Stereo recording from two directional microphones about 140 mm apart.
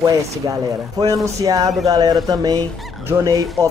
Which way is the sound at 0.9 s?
25° right (ahead or behind).